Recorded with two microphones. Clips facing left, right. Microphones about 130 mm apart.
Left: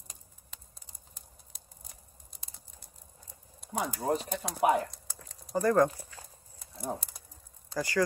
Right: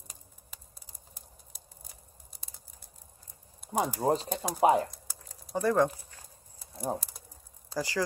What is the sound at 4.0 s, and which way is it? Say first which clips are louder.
Speech: right 1 dB; 25° right (ahead or behind).